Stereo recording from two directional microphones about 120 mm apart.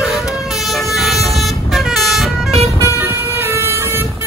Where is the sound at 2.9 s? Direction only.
20° right (ahead or behind).